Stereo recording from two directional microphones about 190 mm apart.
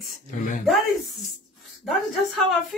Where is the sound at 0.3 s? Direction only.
40° left (ahead or behind).